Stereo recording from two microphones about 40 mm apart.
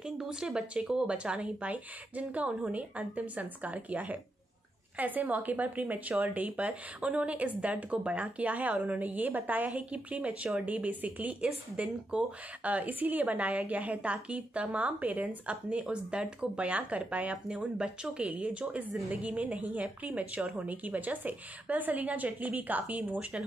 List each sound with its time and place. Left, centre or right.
0.0 s a woman's voice: centre; by 9.7 s right
9.7 s a woman's voice: right
11.7 s speech: right
12.6 s a woman's voice: right
17.5 s a woman's voice: right